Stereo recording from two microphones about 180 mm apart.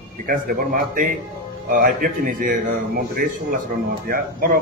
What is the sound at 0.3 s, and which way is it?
A man's voice, 50° right (ahead or behind).